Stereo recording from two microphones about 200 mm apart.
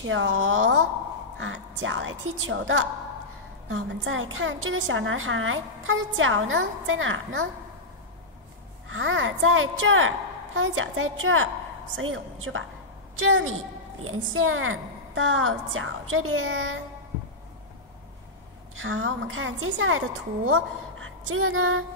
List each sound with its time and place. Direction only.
0.0 s a woman's voice: 75° right (ahead or behind)
8.8 s a woman's voice: 80° right
18.8 s a woman's voice: 90° right
20.4 s a woman's voice: 80° right